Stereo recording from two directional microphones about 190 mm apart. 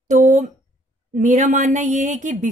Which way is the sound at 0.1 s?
40° right (ahead or behind).